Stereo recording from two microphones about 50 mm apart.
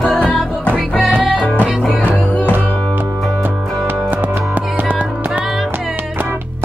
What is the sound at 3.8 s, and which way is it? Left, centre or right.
Music, right.